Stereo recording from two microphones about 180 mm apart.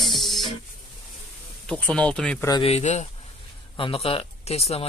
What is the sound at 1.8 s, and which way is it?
Speech, 5° left (ahead or behind).